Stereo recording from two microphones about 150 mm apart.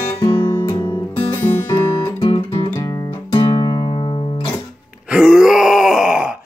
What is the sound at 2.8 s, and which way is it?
Guitar, 25° left (ahead or behind).